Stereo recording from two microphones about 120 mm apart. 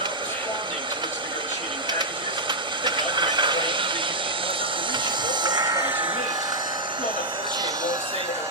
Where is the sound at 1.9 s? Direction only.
40° right (ahead or behind).